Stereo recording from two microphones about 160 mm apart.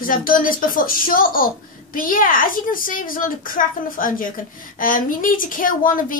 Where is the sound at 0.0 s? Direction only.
60° left (ahead or behind).